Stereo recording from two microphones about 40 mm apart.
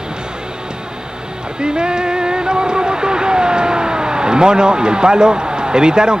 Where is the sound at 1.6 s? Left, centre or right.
Right.